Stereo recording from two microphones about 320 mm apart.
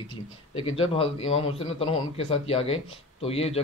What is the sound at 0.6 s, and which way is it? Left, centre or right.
A man's voice, centre.